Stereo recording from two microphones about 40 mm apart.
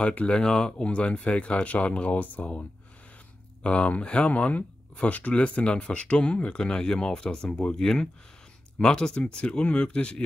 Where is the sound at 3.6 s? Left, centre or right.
Left.